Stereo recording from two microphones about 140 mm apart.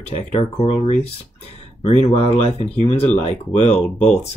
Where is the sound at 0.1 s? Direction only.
50° left (ahead or behind).